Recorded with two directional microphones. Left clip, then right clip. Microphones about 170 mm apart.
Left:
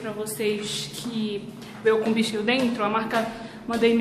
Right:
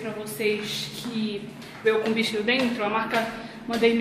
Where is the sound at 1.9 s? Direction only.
10° left (ahead or behind).